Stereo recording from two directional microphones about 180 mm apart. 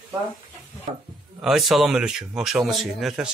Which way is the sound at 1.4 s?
Centre (ahead or behind).